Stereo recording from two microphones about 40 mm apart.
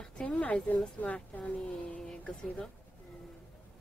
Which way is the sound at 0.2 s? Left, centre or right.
Left.